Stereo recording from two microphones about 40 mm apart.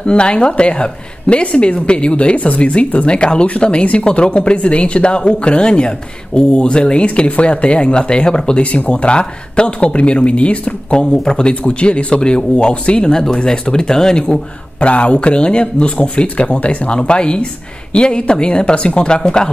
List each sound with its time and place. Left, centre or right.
0.0 s speech: left
2.3 s speech: left
8.6 s speech: left
17.0 s speech: left